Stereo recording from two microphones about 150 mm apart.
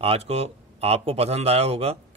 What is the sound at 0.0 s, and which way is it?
A man's voice, 40° right (ahead or behind).